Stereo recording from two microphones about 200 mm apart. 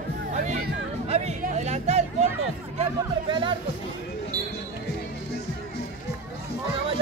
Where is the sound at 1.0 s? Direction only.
30° right (ahead or behind).